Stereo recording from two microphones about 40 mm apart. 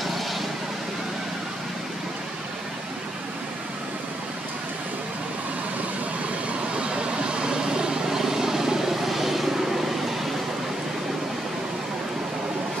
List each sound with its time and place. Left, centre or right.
6.8 s vehicle: right; by 10.1 s centre